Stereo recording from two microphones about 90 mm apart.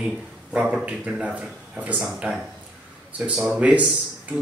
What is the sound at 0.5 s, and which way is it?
A man's voice, 15° right (ahead or behind).